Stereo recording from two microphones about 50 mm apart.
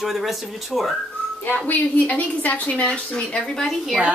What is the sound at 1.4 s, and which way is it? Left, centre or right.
A woman's voice, left.